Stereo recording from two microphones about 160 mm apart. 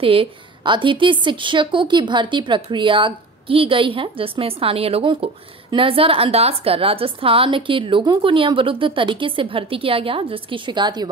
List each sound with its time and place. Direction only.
0.0 s a woman's voice: 35° right (ahead or behind)